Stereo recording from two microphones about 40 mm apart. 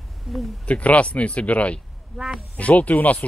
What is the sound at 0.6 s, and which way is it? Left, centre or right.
Speech, left.